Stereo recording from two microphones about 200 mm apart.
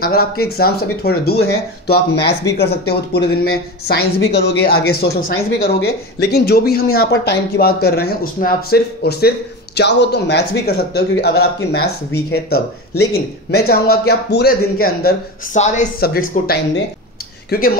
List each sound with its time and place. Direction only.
0.0 s speech: 50° left (ahead or behind)
2.5 s speech: 55° left (ahead or behind)
12.5 s speech: 90° left
13.1 s speech: 50° left (ahead or behind)